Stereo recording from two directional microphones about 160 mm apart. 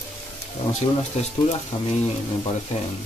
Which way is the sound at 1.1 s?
40° left (ahead or behind).